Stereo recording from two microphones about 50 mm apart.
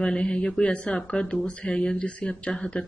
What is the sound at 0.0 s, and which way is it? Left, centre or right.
Speech, left.